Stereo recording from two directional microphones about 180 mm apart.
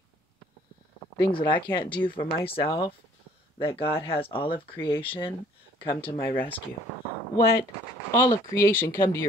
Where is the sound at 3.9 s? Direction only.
30° left (ahead or behind).